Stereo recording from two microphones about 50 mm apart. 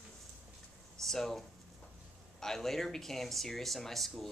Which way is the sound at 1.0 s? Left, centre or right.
Centre.